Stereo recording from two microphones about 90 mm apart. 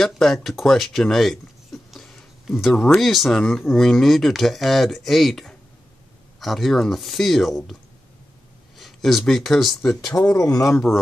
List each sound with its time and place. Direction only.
0.0 s speech: 5° left (ahead or behind)
8.7 s speech: centre (ahead or behind)
10.3 s speech: 40° left (ahead or behind)